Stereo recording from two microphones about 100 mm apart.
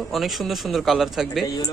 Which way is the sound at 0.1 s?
Centre (ahead or behind).